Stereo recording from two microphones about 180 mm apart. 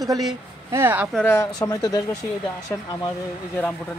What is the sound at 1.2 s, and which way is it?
Speech, 10° left (ahead or behind).